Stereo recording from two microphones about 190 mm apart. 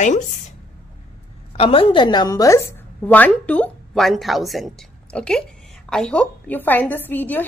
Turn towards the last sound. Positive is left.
turn(degrees=10)  # may be behind; listen again after turning